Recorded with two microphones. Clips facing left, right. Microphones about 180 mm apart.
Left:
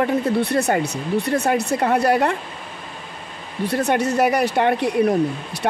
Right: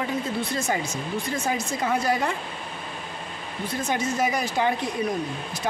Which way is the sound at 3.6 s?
70° left (ahead or behind).